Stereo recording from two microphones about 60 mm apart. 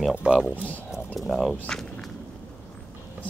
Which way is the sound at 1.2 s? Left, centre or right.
Centre.